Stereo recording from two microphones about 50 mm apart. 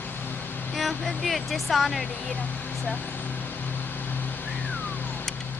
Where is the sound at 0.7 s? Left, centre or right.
Centre.